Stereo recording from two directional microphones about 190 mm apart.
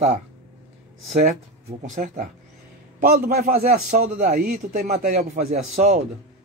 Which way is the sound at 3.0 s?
50° right (ahead or behind).